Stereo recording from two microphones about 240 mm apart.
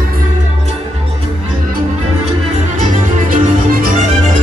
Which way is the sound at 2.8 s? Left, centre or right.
Right.